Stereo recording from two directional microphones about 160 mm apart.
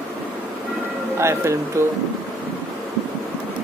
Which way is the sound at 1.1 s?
15° right (ahead or behind).